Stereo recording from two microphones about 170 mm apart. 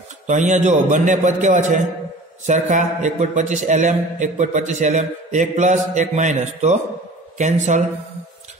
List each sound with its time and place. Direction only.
0.3 s a man's voice: 45° right (ahead or behind)